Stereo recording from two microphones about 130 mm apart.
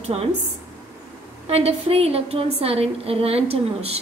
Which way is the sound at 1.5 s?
50° right (ahead or behind).